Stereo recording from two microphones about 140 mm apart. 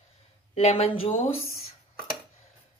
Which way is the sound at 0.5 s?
45° left (ahead or behind).